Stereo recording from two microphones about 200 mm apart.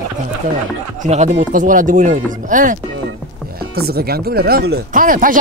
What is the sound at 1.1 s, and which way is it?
Speech, 35° right (ahead or behind).